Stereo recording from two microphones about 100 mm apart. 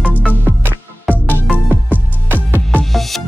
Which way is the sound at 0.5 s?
20° right (ahead or behind).